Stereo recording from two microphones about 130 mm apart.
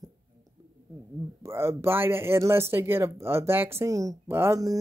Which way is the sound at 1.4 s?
20° right (ahead or behind).